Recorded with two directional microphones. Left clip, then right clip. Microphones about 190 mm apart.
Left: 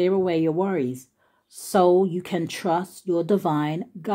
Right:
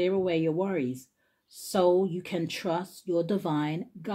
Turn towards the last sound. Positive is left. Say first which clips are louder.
# left 6 dB
turn(degrees=35)  # may be behind; listen again after turning